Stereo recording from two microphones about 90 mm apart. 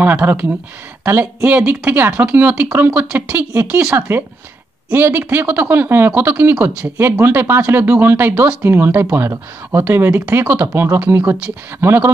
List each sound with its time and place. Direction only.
0.0 s speech: 20° right (ahead or behind)
4.8 s speech: 25° right (ahead or behind)
10.7 s speech: 30° right (ahead or behind)
11.0 s speech: 20° right (ahead or behind)